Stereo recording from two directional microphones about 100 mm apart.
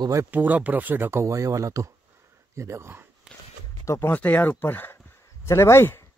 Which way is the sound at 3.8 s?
30° left (ahead or behind).